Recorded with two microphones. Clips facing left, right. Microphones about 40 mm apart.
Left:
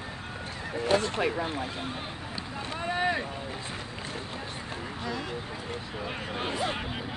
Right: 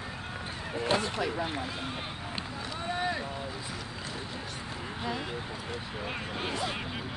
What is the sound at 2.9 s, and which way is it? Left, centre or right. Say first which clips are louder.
Boat: left 4 dB; left.